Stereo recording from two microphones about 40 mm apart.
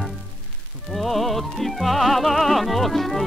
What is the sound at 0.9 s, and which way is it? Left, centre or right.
Music, centre.